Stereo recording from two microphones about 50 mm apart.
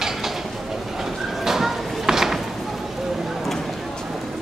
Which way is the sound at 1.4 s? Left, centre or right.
Centre.